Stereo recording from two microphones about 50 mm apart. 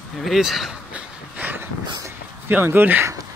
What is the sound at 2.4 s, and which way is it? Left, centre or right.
Speech, right.